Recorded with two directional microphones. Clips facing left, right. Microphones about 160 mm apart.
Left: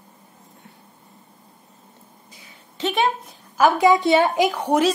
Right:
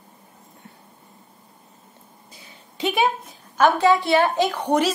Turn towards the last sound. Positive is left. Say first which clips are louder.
# left 1 dB
turn(degrees=5)  # may be behind; listen again after turning